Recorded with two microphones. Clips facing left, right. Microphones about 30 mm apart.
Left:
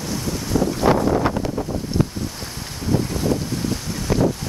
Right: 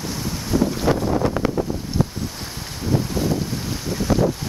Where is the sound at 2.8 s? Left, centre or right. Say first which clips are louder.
Left 1 dB; centre.